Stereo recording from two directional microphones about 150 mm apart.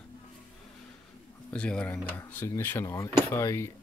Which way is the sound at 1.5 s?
5° left (ahead or behind).